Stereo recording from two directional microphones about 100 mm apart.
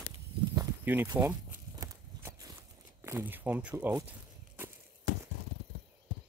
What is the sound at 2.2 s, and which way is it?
Walk, 30° right (ahead or behind).